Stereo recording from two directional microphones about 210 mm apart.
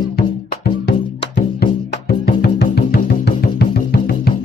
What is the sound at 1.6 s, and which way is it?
Music, 45° left (ahead or behind).